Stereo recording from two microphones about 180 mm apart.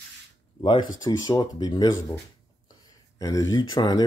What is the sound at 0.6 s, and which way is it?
Speech, 25° left (ahead or behind).